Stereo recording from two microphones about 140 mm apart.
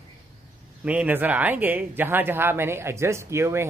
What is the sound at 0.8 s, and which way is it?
A man's voice, 10° right (ahead or behind).